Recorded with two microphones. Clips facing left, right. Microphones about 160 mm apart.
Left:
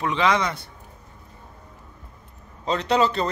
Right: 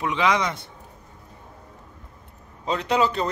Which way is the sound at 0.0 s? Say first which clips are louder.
Left 1 dB; 10° right (ahead or behind).